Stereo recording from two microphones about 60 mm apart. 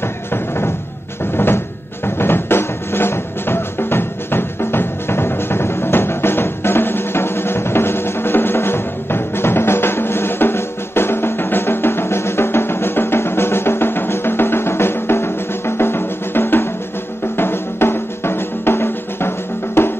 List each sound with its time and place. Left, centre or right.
1.3 s music: left
17.4 s drum: left